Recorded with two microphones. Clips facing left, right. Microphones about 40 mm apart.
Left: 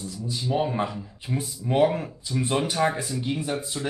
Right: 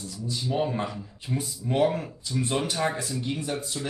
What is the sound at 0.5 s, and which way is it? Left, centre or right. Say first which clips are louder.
Speech: left 2 dB; centre.